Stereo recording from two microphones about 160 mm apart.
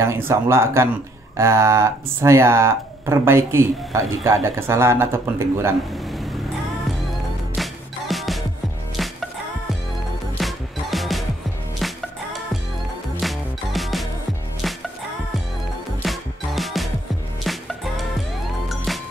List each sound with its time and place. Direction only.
0.0 s speech: 15° right (ahead or behind)
7.1 s music: centre (ahead or behind)
10.3 s music: centre (ahead or behind)
13.2 s music: centre (ahead or behind)
16.0 s music: centre (ahead or behind)